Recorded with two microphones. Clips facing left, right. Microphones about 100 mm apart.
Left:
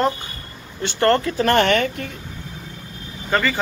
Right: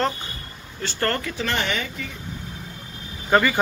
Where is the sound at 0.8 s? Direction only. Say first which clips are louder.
Left 8 dB; 25° left (ahead or behind).